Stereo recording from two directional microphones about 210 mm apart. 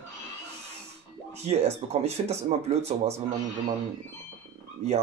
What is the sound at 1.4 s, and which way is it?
Speech, 30° right (ahead or behind).